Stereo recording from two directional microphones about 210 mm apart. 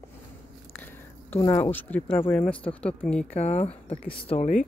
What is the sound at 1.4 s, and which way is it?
Speech, 15° left (ahead or behind).